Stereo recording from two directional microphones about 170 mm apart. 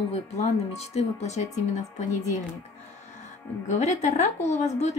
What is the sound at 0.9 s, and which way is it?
Speech, 40° left (ahead or behind).